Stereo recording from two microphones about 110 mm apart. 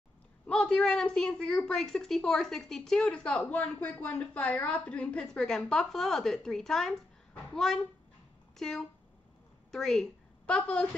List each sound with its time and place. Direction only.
0.5 s a woman's voice: 5° left (ahead or behind)